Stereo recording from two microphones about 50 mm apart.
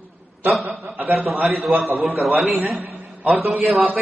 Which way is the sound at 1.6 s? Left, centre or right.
Centre.